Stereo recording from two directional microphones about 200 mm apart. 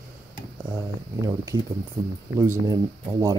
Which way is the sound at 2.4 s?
15° right (ahead or behind).